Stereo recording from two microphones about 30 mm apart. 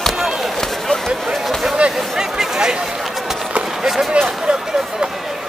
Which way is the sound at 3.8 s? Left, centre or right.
Centre.